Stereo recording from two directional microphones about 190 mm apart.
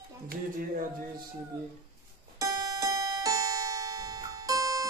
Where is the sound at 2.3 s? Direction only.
20° right (ahead or behind).